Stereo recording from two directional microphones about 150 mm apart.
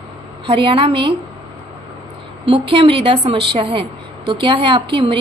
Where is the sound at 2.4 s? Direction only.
35° right (ahead or behind).